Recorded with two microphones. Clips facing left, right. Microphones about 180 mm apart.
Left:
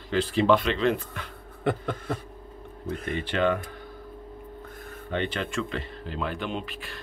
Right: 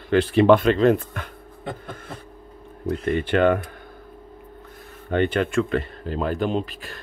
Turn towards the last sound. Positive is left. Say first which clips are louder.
# right 7 dB
turn(degrees=-40)  # may be behind; listen again after turning